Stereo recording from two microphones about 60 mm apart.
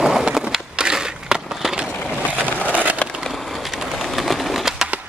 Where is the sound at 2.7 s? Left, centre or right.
Right.